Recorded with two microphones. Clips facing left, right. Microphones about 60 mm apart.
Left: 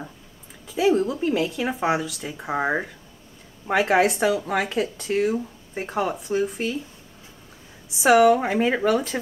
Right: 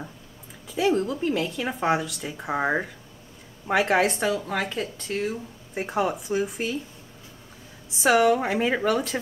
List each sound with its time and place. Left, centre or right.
0.7 s speech: centre
5.8 s speech: centre
7.9 s speech: centre